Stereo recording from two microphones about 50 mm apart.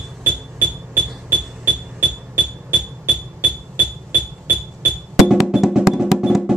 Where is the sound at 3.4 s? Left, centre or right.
Left.